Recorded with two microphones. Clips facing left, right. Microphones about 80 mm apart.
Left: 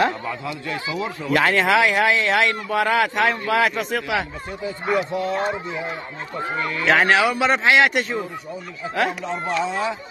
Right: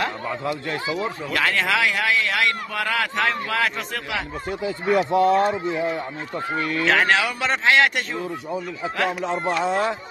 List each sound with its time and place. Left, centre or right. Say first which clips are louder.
0.3 s speech: right 2 dB; right
1.3 s speech: left 5 dB; left
4.9 s speech: right 6 dB; right
6.9 s speech: left 4 dB; centre
9.2 s speech: right 1 dB; right